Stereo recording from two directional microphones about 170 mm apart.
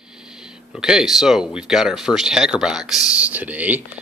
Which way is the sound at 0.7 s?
5° right (ahead or behind).